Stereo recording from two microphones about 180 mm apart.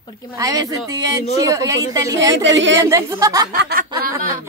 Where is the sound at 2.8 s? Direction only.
20° right (ahead or behind).